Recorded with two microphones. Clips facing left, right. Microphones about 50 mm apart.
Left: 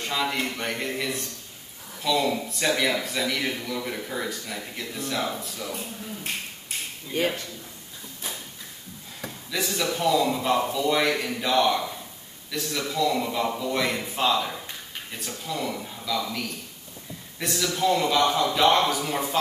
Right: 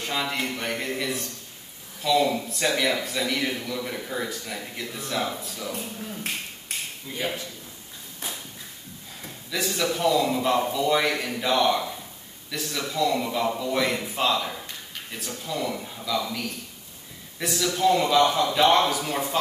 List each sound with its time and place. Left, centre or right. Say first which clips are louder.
0.2 s a man's voice: left 1 dB; centre
7.2 s a man's voice: left 5 dB; left
9.5 s a man's voice: right 1 dB; centre